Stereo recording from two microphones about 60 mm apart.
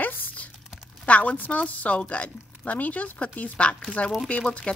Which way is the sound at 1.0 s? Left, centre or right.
Left.